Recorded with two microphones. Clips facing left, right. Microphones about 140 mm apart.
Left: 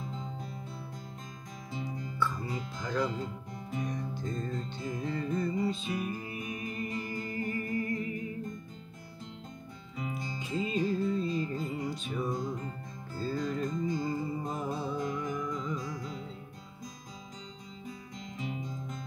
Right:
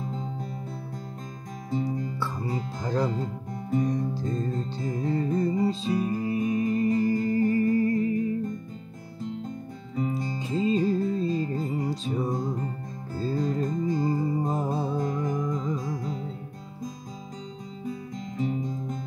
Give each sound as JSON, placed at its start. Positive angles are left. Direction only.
{"t": 1.7, "sound": "music", "side_deg": -45}
{"t": 9.9, "sound": "music", "side_deg": -40}
{"t": 17.8, "sound": "music", "side_deg": -40}